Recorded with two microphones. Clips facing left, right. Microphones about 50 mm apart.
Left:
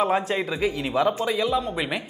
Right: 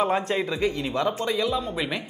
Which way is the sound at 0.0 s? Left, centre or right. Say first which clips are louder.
Left 1 dB; centre.